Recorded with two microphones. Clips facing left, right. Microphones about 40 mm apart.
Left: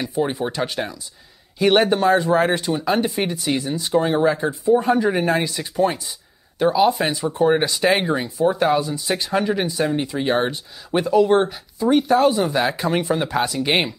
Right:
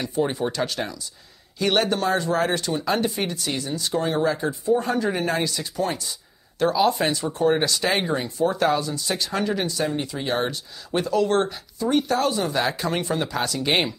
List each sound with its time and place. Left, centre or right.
0.1 s speech: centre